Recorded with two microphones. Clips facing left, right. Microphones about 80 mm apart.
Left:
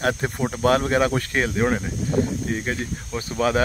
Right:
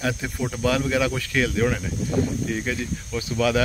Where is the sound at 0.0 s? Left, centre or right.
Left.